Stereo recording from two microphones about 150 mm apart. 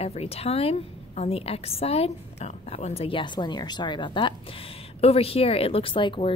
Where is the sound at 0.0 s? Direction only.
45° left (ahead or behind).